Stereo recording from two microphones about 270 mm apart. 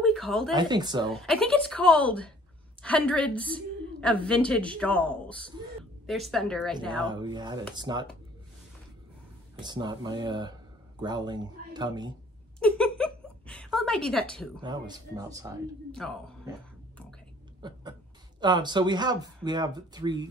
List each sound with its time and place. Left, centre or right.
0.0 s a sound: centre
0.6 s speech: centre
1.1 s a woman's voice: centre
7.1 s speech: centre
9.6 s speech: centre
12.5 s a sound: centre
14.6 s speech: centre
15.9 s a woman's voice: centre
17.6 s a sound: centre
18.4 s speech: centre